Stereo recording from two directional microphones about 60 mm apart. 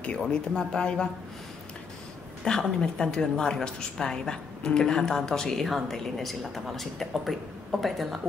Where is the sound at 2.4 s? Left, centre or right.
Centre.